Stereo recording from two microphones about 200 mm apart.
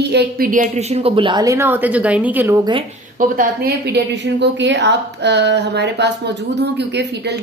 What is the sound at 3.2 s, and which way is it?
A woman's voice, 45° right (ahead or behind).